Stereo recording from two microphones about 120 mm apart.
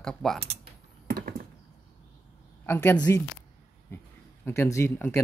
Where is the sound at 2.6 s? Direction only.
20° left (ahead or behind).